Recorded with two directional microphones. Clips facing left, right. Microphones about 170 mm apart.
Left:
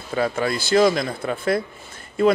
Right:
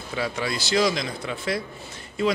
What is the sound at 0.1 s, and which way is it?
A man's voice, 50° left (ahead or behind).